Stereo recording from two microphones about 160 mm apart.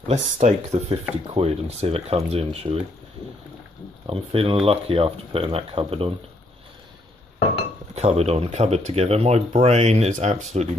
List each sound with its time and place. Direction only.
0.1 s speech: 45° right (ahead or behind)
4.1 s speech: 35° right (ahead or behind)
7.9 s speech: 40° right (ahead or behind)